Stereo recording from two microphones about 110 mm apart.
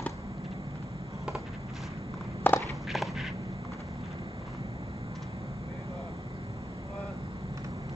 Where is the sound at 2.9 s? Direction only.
Centre (ahead or behind).